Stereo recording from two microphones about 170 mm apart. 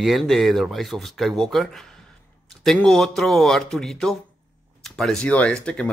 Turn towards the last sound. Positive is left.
turn(degrees=5)  # may be behind; listen again after turning